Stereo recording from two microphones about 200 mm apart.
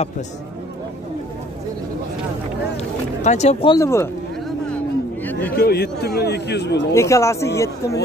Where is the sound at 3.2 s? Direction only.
35° left (ahead or behind).